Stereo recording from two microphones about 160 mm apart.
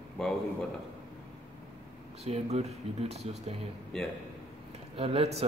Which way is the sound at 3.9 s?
5° left (ahead or behind).